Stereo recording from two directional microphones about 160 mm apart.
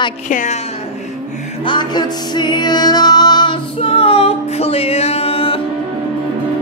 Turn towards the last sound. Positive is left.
turn(degrees=40)  # may be behind; listen again after turning